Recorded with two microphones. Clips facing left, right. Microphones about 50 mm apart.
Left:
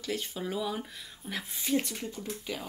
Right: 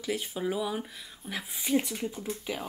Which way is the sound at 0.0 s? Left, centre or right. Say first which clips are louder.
Right 3 dB; centre.